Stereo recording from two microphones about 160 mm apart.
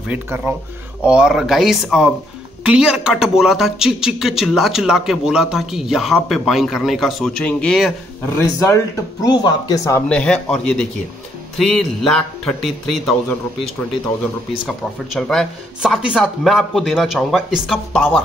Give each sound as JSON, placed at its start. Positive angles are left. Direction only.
{"t": 0.1, "sound": "speech", "side_deg": -15}
{"t": 8.4, "sound": "speech", "side_deg": 20}
{"t": 10.0, "sound": "speech", "side_deg": 5}